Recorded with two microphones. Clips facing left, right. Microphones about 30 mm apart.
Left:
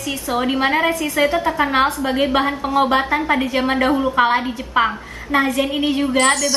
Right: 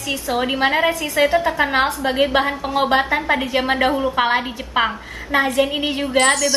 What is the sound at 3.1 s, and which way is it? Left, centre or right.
A woman's voice, centre.